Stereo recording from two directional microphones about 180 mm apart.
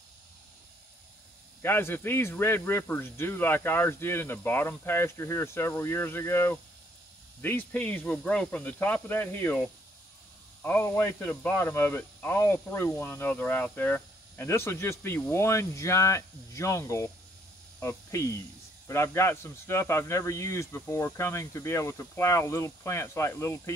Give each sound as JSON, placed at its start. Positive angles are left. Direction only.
{"t": 1.6, "sound": "speech", "side_deg": 10}
{"t": 10.6, "sound": "speech", "side_deg": 10}